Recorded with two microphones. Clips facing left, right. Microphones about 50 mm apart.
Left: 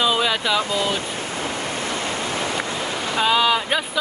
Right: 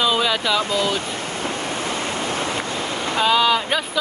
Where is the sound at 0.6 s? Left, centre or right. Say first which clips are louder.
Right 1 dB; left.